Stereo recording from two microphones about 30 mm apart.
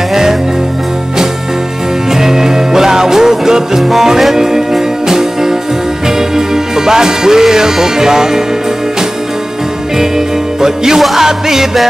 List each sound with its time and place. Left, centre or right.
0.1 s music: centre
2.0 s music: centre
9.9 s music: centre
11.0 s music: centre